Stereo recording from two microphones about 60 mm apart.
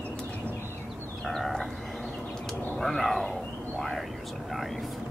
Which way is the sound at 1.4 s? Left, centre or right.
Centre.